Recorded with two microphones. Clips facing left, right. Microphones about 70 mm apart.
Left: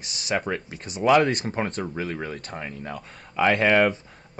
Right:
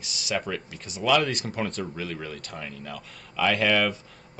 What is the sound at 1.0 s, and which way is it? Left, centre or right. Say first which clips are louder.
Speech: left 4 dB; left.